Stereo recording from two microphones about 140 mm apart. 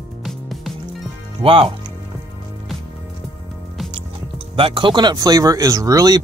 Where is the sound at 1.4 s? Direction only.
40° right (ahead or behind).